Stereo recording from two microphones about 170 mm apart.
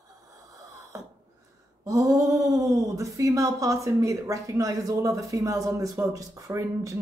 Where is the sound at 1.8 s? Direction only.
20° right (ahead or behind).